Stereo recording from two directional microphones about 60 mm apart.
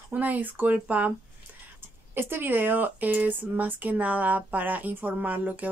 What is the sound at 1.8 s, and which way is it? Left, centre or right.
Speech, right.